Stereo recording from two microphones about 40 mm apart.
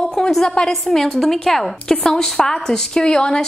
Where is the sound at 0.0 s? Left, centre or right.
Centre.